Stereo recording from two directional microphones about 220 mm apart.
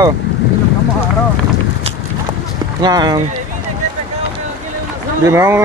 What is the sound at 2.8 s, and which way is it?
Speech, 20° right (ahead or behind).